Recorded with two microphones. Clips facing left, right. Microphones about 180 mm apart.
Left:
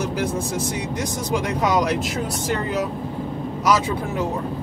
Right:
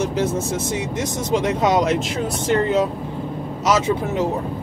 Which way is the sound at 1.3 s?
20° right (ahead or behind).